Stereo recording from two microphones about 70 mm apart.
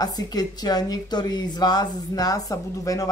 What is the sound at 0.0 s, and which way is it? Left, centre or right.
Speech, left.